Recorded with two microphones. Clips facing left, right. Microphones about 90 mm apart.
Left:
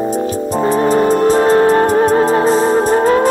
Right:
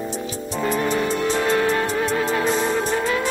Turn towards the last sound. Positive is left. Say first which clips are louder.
# left 10 dB
turn(degrees=45)  # may be behind; listen again after turning